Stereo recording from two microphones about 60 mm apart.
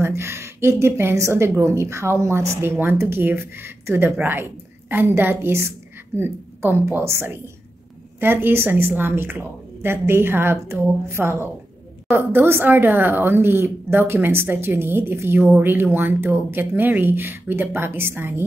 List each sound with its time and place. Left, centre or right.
0.0 s a woman's voice: right